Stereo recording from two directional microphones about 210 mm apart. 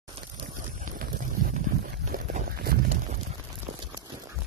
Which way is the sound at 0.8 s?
40° right (ahead or behind).